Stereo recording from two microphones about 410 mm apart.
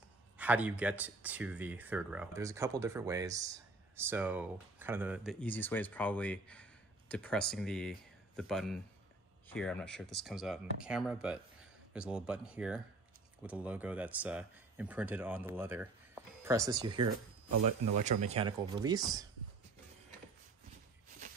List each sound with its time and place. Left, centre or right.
0.4 s speech: centre